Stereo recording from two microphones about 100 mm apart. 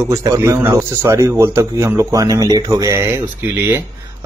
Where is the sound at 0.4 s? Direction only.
30° right (ahead or behind).